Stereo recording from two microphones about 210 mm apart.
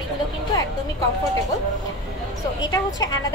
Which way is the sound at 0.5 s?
20° left (ahead or behind).